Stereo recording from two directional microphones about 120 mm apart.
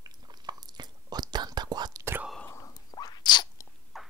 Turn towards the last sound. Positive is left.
turn(degrees=0)  # may be behind; listen again after turning